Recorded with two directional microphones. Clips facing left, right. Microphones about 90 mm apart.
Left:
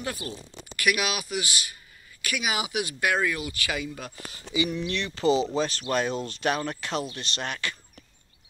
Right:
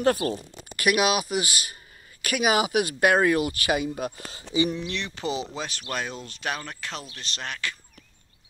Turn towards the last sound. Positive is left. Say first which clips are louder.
# left 1 dB
turn(degrees=5)  # may be behind; listen again after turning